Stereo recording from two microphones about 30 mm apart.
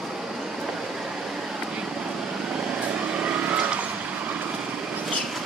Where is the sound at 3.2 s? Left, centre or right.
Right.